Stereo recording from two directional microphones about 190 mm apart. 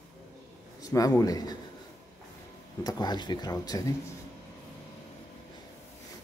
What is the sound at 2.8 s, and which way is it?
Speech, 20° left (ahead or behind).